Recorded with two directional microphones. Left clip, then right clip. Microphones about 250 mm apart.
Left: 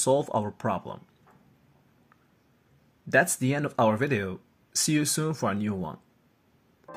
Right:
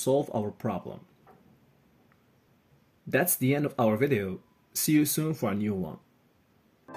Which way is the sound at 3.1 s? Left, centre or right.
Centre.